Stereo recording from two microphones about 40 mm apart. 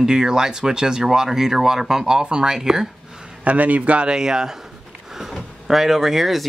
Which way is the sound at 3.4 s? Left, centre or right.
Right.